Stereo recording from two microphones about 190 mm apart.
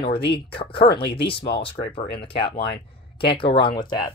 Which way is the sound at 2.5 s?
60° left (ahead or behind).